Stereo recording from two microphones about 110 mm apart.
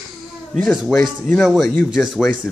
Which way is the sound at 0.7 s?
Centre (ahead or behind).